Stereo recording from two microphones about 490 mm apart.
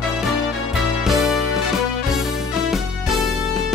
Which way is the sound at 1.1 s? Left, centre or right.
Centre.